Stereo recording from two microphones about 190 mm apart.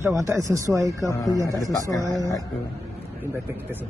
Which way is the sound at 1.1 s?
15° left (ahead or behind).